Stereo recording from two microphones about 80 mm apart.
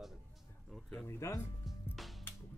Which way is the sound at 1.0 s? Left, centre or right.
Left.